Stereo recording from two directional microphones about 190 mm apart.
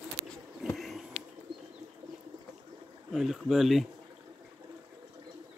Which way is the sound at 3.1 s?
Centre (ahead or behind).